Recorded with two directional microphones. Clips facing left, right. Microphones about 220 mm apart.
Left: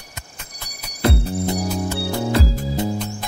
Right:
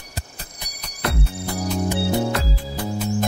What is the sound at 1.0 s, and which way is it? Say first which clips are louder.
Music: left 6 dB; 30° left (ahead or behind).